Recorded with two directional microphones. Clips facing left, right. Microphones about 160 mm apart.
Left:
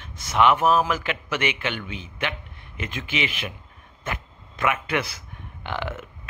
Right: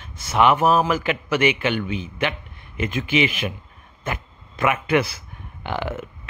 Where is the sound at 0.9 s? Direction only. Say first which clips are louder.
Right 5 dB; 5° right (ahead or behind).